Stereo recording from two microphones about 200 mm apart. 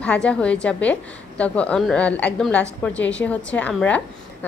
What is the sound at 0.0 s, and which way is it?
A woman's voice, 5° left (ahead or behind).